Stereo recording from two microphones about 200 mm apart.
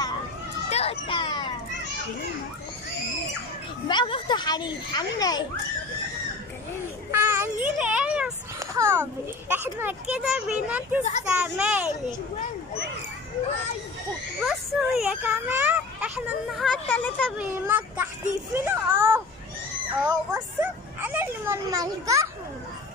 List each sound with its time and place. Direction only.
0.7 s music: 30° left (ahead or behind)
3.8 s a child's voice: 25° left (ahead or behind)
7.1 s child singing: 10° right (ahead or behind)
8.7 s a child's voice: 10° right (ahead or behind)
14.4 s speech: centre (ahead or behind)
17.4 s a child's voice: 10° right (ahead or behind)
20.1 s a sound: 10° right (ahead or behind)